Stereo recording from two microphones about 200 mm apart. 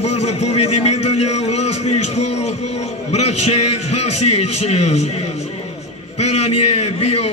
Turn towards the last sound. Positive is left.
turn(degrees=30)  # may be behind; listen again after turning